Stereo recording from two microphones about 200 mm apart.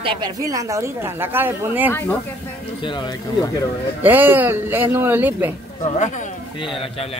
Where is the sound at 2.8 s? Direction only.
20° left (ahead or behind).